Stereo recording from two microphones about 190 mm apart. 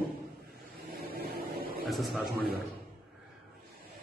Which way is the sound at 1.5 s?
50° right (ahead or behind).